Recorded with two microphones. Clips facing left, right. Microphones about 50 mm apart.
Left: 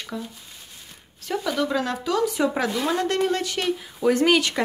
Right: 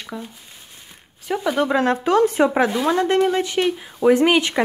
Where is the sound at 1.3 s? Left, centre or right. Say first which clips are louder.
Right 4 dB; right.